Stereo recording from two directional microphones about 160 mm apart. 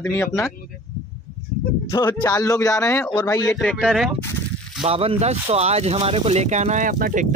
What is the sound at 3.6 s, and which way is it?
Speech, 5° left (ahead or behind).